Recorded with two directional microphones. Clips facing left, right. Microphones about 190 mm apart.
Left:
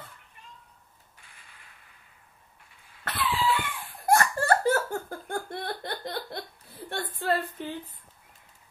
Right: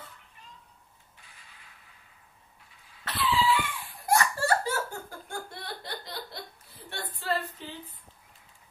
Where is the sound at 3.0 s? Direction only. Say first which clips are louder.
Right 1 dB; 55° left (ahead or behind).